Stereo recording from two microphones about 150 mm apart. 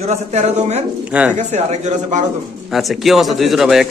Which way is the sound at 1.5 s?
50° right (ahead or behind).